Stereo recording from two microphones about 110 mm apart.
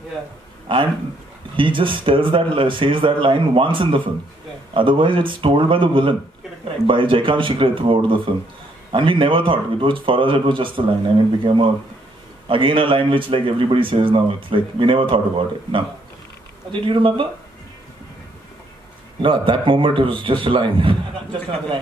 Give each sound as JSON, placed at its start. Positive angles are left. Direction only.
{"t": 0.7, "sound": "speech", "side_deg": -50}
{"t": 16.8, "sound": "speech", "side_deg": -50}
{"t": 19.2, "sound": "speech", "side_deg": -50}